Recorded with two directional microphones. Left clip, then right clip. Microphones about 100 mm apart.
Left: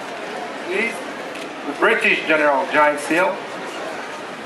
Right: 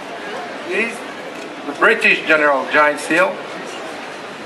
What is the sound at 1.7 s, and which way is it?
Speech, 25° right (ahead or behind).